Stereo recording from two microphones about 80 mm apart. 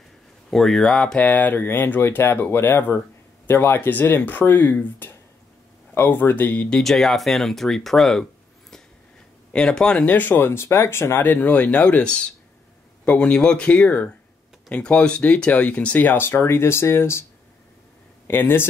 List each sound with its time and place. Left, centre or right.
0.5 s speech: centre
6.8 s speech: centre
10.1 s speech: left
11.3 s speech: centre; by 17.2 s left
18.2 s speech: left